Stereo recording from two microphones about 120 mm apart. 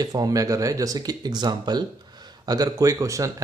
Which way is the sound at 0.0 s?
30° right (ahead or behind).